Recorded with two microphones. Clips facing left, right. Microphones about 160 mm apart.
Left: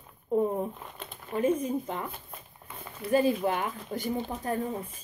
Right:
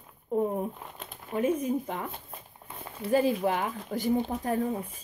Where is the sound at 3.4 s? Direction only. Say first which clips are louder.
Right 1 dB; 20° right (ahead or behind).